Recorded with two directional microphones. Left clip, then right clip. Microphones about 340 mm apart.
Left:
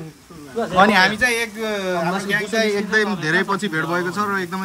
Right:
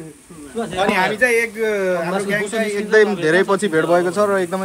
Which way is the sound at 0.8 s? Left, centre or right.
Left.